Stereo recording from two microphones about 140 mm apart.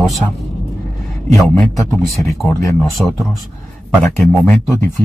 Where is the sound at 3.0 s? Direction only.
Centre (ahead or behind).